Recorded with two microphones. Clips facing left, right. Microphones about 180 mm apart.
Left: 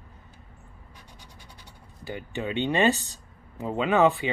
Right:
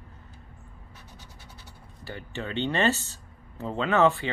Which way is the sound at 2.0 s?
15° left (ahead or behind).